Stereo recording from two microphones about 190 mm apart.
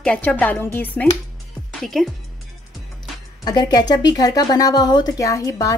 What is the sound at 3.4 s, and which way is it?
A woman's voice, 20° left (ahead or behind).